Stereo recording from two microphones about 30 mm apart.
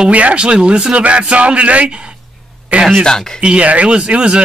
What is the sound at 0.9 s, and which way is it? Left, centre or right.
Speech, right.